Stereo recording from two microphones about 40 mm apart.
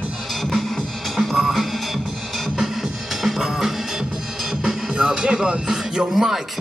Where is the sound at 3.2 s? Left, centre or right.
Centre.